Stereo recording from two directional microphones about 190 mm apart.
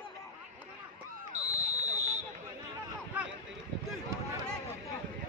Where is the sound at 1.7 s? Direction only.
35° right (ahead or behind).